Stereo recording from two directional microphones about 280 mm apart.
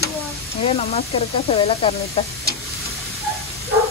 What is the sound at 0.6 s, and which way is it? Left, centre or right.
Speech, left.